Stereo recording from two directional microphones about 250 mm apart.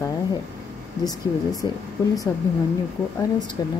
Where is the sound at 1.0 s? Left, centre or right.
Centre.